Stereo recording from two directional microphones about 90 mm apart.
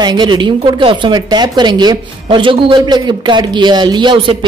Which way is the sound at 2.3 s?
75° right (ahead or behind).